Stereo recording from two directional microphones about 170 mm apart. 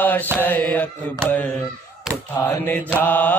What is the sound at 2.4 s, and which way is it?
Mantra, 10° left (ahead or behind).